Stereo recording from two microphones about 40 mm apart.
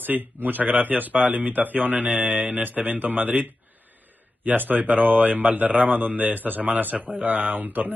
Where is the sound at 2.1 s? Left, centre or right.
Right.